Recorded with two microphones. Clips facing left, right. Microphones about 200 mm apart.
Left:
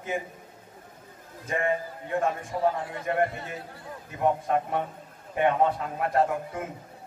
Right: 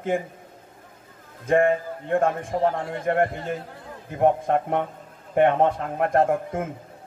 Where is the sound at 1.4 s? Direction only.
55° right (ahead or behind).